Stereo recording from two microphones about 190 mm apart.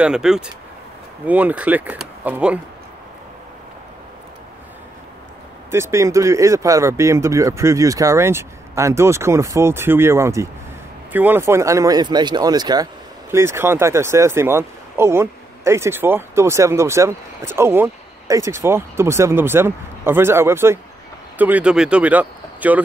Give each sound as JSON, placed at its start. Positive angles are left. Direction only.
{"t": 0.0, "sound": "speech", "side_deg": -5}
{"t": 5.7, "sound": "speech", "side_deg": -15}